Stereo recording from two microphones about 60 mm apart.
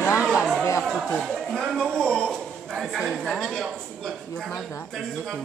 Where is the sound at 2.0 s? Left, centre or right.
Centre.